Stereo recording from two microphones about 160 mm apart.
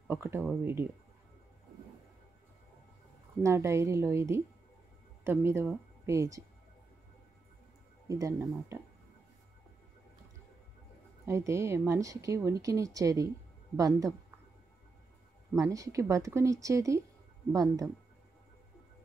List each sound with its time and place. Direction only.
0.1 s a woman's voice: 15° right (ahead or behind)
3.4 s a woman's voice: 20° right (ahead or behind)
8.1 s a woman's voice: 20° right (ahead or behind)
11.2 s a woman's voice: 15° right (ahead or behind)
15.5 s a woman's voice: 20° right (ahead or behind)